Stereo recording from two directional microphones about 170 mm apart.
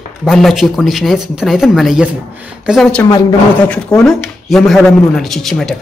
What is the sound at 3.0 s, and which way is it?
Speech, 20° left (ahead or behind).